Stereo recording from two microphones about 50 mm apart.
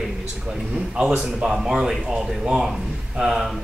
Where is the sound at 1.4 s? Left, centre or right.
Centre.